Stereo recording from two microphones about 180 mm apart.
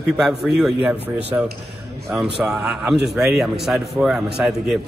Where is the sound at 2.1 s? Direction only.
5° right (ahead or behind).